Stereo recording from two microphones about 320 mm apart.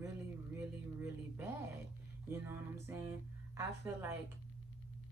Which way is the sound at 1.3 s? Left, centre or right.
Centre.